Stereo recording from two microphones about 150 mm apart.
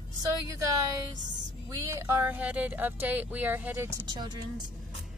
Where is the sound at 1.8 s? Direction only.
20° right (ahead or behind).